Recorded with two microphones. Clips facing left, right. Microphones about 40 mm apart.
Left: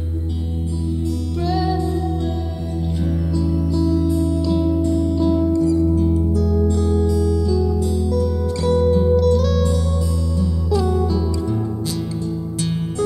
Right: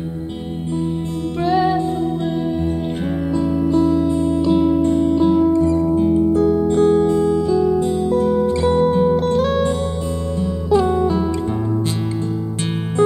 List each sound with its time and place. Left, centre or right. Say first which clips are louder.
1.4 s music: right 5 dB; right
3.3 s music: right 5 dB; right